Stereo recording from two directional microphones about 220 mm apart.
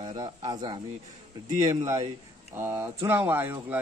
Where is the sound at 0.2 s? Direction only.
20° right (ahead or behind).